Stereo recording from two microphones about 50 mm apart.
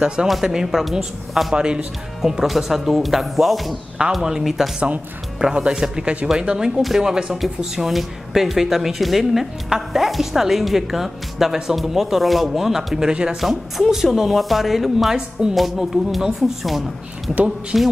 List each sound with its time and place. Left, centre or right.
0.0 s speech: centre
1.5 s speech: centre
2.2 s speech: centre
5.4 s speech: centre
13.4 s speech: centre